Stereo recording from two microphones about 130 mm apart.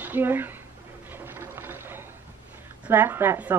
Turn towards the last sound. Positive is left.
turn(degrees=-15)  # may be behind; listen again after turning